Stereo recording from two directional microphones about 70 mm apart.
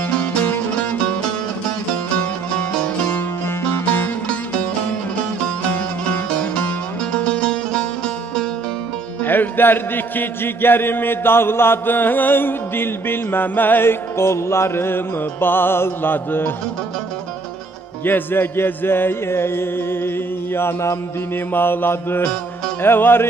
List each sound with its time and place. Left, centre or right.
0.2 s music: left
3.1 s music: left
6.5 s music: centre
9.2 s music: left
18.0 s music: left